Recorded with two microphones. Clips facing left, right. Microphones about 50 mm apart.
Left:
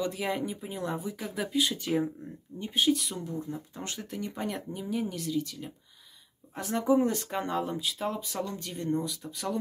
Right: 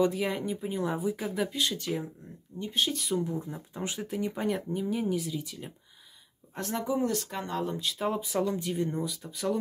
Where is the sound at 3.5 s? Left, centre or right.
Centre.